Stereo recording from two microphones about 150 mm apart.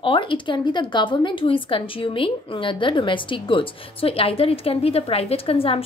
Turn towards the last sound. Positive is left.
turn(degrees=40)  # may be behind; listen again after turning